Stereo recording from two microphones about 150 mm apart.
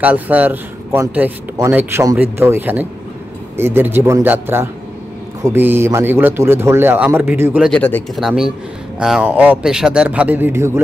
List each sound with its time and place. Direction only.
0.0 s a man's voice: 10° right (ahead or behind)
7.6 s a man's voice: 5° left (ahead or behind); by 10.8 s 15° right (ahead or behind)